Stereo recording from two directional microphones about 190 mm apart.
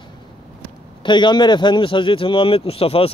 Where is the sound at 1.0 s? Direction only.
25° left (ahead or behind).